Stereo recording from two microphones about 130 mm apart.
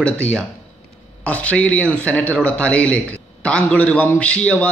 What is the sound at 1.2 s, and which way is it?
Speech, 10° left (ahead or behind).